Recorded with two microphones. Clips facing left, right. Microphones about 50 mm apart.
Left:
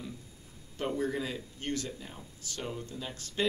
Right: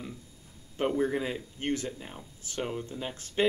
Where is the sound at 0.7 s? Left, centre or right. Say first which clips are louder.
Right 4 dB; right.